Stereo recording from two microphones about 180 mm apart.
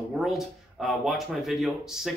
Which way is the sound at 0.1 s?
Centre (ahead or behind).